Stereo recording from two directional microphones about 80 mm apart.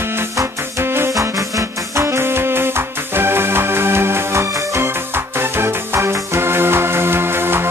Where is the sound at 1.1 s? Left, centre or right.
Right.